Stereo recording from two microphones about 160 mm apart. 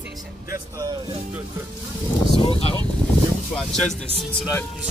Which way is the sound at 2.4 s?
35° left (ahead or behind).